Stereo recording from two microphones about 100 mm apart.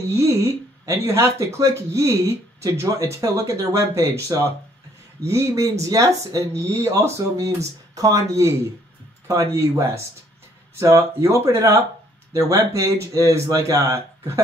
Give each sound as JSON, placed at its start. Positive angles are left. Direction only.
{"t": 0.1, "sound": "speech", "side_deg": -30}